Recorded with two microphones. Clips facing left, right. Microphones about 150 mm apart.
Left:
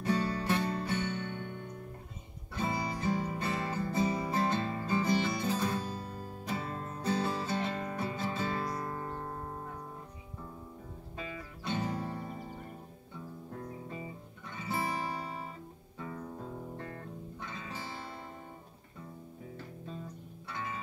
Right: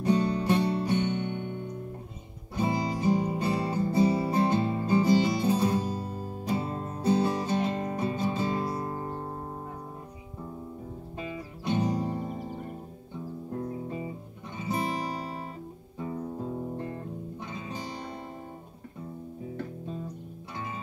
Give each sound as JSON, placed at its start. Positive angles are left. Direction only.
{"t": 0.0, "sound": "music", "side_deg": -15}
{"t": 2.5, "sound": "music", "side_deg": -20}
{"t": 11.1, "sound": "music", "side_deg": -20}
{"t": 13.5, "sound": "music", "side_deg": -20}